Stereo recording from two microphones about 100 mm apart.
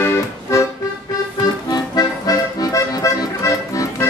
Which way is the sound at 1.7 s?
40° left (ahead or behind).